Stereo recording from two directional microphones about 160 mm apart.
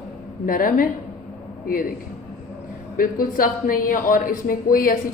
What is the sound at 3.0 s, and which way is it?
Speech, 60° left (ahead or behind).